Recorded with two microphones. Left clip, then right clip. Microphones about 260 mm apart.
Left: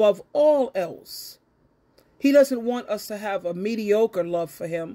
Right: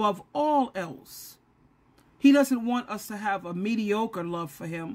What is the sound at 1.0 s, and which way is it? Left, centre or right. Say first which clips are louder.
Speech: left 8 dB; right.